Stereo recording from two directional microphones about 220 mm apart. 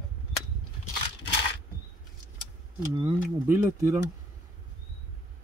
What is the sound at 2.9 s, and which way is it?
Speech, 15° right (ahead or behind).